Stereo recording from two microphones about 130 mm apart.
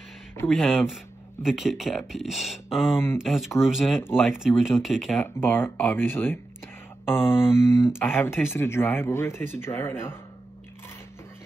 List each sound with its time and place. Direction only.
0.5 s speech: centre (ahead or behind)
5.2 s speech: 15° left (ahead or behind)
7.1 s a sound: 15° left (ahead or behind)
8.0 s speech: 15° left (ahead or behind)